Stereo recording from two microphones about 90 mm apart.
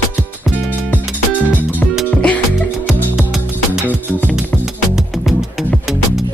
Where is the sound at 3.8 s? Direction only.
20° left (ahead or behind).